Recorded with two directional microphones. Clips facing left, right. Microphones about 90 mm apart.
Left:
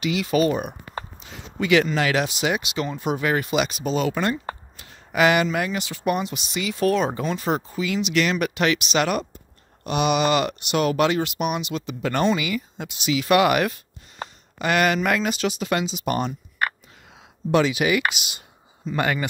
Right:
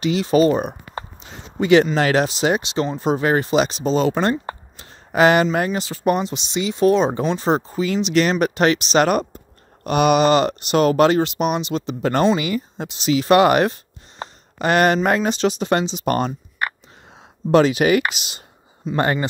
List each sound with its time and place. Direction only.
0.0 s speech: 35° right (ahead or behind)
1.2 s a sound: 30° right (ahead or behind)
2.0 s speech: 40° right (ahead or behind)
4.7 s a sound: 35° right (ahead or behind)
5.7 s speech: 35° right (ahead or behind)
17.5 s speech: 40° right (ahead or behind)